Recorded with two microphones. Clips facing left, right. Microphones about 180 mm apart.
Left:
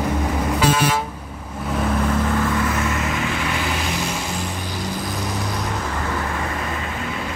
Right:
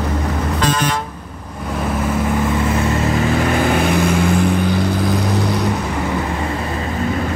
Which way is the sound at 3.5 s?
50° right (ahead or behind).